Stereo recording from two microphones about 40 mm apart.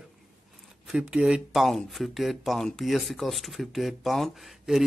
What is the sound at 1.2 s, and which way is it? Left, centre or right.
Speech, right.